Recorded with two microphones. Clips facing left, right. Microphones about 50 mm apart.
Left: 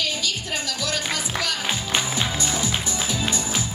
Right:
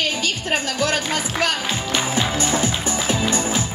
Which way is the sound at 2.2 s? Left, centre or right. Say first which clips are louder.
Right 5 dB; right.